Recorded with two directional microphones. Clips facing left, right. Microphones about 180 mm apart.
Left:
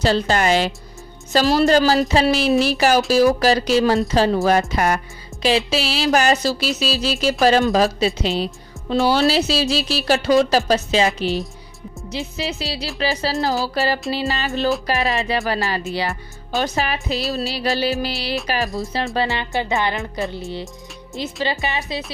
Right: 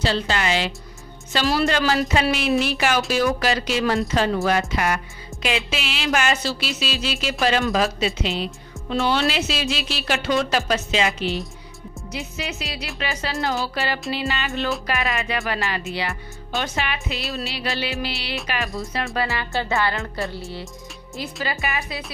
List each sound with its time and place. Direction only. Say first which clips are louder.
0.0 s a woman's voice: left 5 dB; 45° left (ahead or behind)
19.1 s speech: left 3 dB; 20° left (ahead or behind)